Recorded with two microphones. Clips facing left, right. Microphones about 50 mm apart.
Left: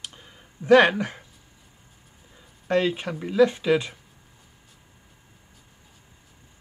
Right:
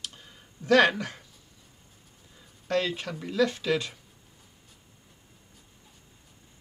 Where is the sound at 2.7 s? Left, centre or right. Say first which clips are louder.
Left 5 dB; left.